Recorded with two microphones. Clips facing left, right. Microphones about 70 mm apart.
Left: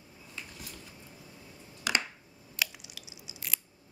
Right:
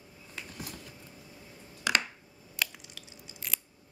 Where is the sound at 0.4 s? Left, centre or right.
Right.